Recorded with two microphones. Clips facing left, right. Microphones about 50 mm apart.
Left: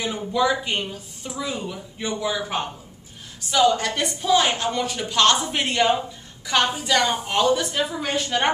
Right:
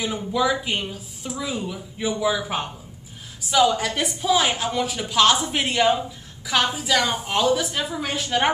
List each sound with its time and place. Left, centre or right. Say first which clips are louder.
0.0 s a woman's voice: even; centre